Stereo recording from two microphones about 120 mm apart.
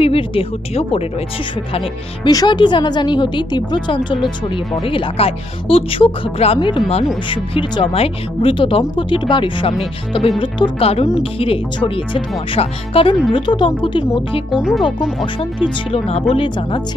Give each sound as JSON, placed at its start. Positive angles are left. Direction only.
{"t": 0.0, "sound": "speech", "side_deg": 50}
{"t": 2.2, "sound": "a woman's voice", "side_deg": 40}
{"t": 14.5, "sound": "speech", "side_deg": -5}
{"t": 15.9, "sound": "speech", "side_deg": 55}